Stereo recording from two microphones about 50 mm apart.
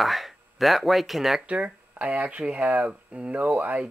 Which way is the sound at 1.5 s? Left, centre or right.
Right.